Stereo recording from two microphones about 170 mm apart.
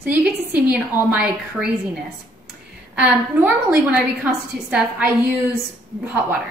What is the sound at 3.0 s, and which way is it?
A woman's voice, 10° right (ahead or behind).